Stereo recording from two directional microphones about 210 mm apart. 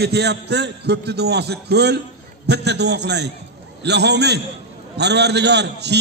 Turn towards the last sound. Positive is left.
turn(degrees=-55)  # may be behind; listen again after turning